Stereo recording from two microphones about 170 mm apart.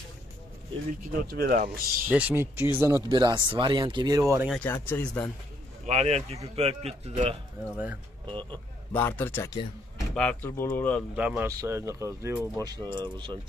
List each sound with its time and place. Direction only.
1.3 s speech: 60° right (ahead or behind)
2.0 s speech: 10° right (ahead or behind)
4.5 s speech: 10° left (ahead or behind)
5.9 s a man's voice: 40° right (ahead or behind)
7.7 s speech: 10° right (ahead or behind)
8.4 s speech: 10° left (ahead or behind)
11.1 s speech: 5° right (ahead or behind); by 12.9 s 20° right (ahead or behind)